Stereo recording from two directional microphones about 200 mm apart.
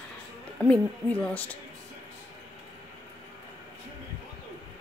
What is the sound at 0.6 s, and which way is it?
Speech, 5° left (ahead or behind).